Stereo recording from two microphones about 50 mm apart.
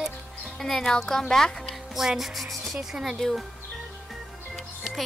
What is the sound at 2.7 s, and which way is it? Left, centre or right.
Speech, centre.